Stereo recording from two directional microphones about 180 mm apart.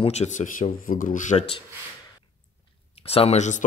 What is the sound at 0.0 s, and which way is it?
Speech, 40° left (ahead or behind).